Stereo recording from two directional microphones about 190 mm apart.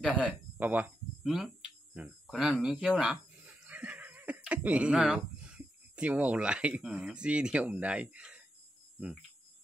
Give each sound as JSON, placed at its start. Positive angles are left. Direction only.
{"t": 0.0, "sound": "speech", "side_deg": -5}